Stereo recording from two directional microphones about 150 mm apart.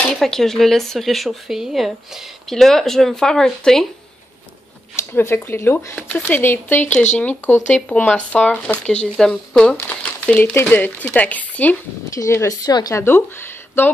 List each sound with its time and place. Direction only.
0.1 s speech: 5° left (ahead or behind)
4.9 s speech: 15° left (ahead or behind)
12.2 s speech: 20° left (ahead or behind)
13.0 s speech: 15° left (ahead or behind)